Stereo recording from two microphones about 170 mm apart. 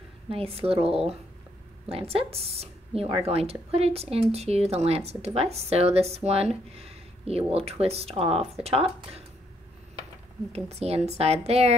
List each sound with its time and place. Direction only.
0.3 s speech: 35° right (ahead or behind)
10.5 s speech: 35° right (ahead or behind)